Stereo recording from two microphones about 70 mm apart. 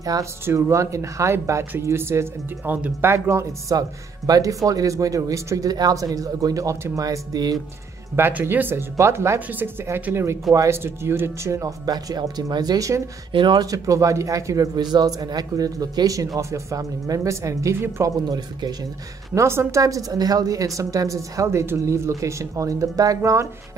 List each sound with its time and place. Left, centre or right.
0.2 s speech: right
4.3 s a man's voice: right
5.7 s a man's voice: right
7.0 s speech: right
8.2 s speech: right
10.1 s speech: right
10.7 s speech: right
11.6 s speech: right
14.8 s a man's voice: right
18.0 s a man's voice: right
19.3 s speech: right
19.8 s speech: right